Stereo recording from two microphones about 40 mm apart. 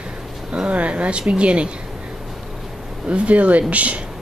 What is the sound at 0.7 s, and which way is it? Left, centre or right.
Speech, right.